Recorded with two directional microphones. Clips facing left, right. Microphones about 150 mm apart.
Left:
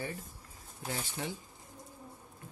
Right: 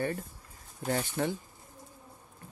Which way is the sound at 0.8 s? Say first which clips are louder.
Right 8 dB; 50° right (ahead or behind).